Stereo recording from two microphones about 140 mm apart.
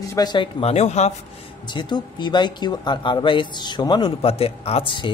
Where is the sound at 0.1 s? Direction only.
30° left (ahead or behind); by 1.1 s 50° left (ahead or behind).